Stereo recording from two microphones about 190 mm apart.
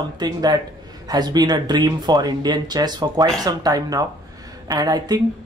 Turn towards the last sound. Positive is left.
turn(degrees=-20)  # may be behind; listen again after turning